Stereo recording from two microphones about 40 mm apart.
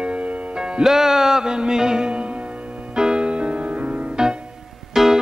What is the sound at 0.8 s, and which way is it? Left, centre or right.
Music, centre.